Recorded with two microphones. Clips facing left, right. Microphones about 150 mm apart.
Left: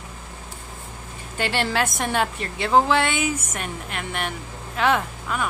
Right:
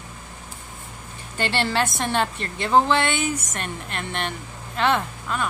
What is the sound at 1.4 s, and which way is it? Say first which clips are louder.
Speech: even; 5° left (ahead or behind).